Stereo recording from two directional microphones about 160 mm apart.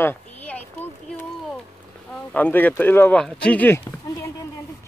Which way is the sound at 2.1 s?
10° left (ahead or behind).